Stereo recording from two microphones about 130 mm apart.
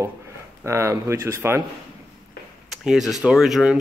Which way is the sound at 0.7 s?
20° right (ahead or behind).